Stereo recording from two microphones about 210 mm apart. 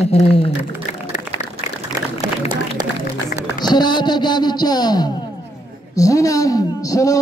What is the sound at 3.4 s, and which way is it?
A man's voice, 20° left (ahead or behind).